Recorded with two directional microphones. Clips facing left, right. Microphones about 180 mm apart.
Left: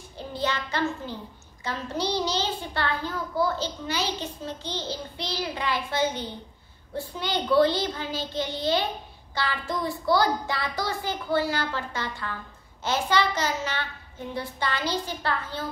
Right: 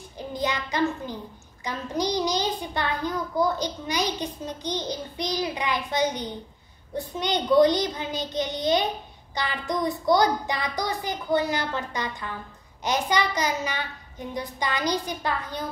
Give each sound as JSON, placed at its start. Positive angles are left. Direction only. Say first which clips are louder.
{"t": 0.3, "sound": "a child's voice", "louder": "right 1 dB", "side_deg": -15}